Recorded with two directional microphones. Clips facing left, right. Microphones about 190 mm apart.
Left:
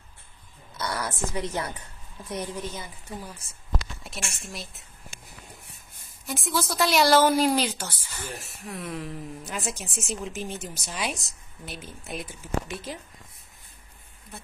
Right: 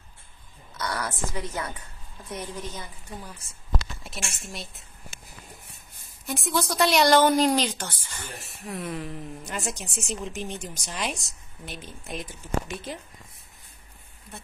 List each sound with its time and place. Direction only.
0.7 s a woman's voice: 20° left (ahead or behind)
2.7 s a woman's voice: 5° left (ahead or behind)
14.3 s speech: centre (ahead or behind)